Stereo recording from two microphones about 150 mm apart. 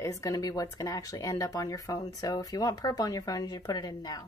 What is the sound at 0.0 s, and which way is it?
Speech, 20° left (ahead or behind).